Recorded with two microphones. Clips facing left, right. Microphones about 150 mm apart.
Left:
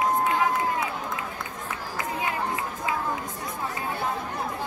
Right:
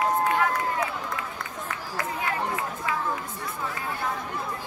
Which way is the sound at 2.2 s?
20° left (ahead or behind).